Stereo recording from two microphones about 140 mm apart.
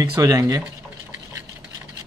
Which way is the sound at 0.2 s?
25° right (ahead or behind).